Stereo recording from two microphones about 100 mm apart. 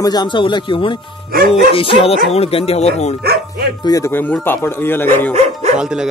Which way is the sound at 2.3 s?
85° left.